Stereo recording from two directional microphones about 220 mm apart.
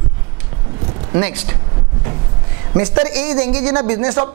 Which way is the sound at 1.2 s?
15° right (ahead or behind).